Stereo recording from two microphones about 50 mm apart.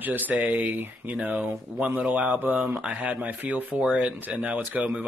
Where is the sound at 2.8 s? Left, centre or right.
Centre.